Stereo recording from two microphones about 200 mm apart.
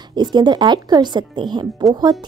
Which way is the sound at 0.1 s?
20° right (ahead or behind).